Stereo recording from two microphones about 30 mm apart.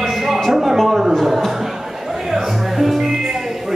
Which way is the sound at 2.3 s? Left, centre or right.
Centre.